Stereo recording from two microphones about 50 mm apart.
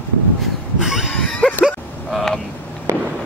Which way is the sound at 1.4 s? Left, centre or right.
Left.